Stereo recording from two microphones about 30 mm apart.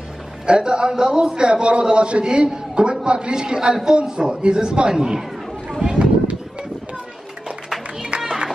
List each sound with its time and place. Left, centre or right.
0.5 s a man's voice: right
5.7 s a sound: right
8.1 s music: right